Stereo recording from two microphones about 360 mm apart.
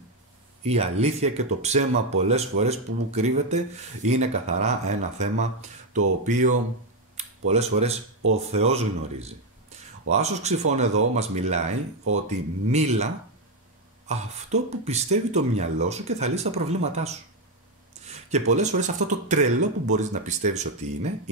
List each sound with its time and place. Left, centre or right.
0.7 s speech: centre
11.7 s speech: right
12.7 s speech: centre